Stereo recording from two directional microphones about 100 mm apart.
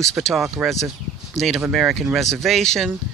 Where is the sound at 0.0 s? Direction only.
Centre (ahead or behind).